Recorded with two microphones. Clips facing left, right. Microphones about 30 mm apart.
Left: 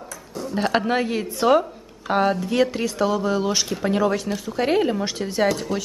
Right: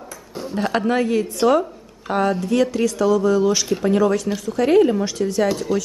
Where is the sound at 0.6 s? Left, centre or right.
Centre.